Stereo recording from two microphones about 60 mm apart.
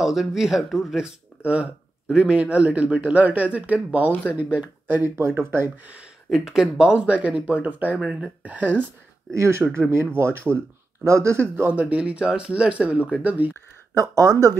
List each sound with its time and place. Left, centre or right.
0.0 s speech: centre
1.0 s speech: right
6.3 s speech: centre; by 8.0 s right
8.0 s speech: centre
8.4 s speech: right
9.3 s speech: right
13.9 s speech: right